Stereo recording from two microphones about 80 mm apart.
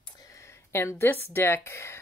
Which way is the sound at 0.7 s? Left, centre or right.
Left.